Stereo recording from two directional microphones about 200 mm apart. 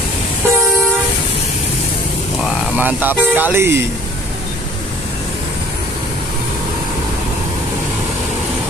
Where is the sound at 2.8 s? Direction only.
10° right (ahead or behind).